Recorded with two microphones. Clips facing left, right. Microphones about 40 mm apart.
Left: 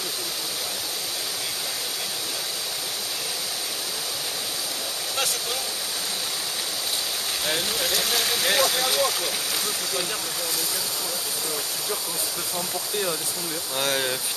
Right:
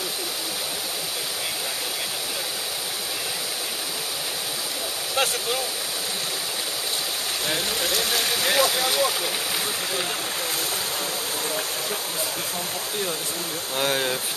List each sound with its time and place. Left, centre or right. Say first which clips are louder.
5.1 s speech: right 5 dB; right
7.4 s speech: even; centre
13.7 s speech: right 2 dB; centre